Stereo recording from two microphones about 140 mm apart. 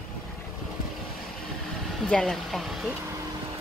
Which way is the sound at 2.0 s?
5° left (ahead or behind).